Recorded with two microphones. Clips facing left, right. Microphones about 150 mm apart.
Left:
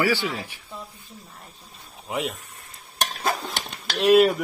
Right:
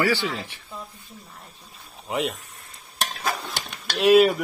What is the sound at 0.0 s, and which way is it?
Speech, 15° left (ahead or behind).